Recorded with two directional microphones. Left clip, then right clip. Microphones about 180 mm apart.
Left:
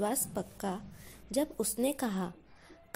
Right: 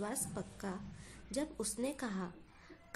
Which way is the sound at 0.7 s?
30° left (ahead or behind).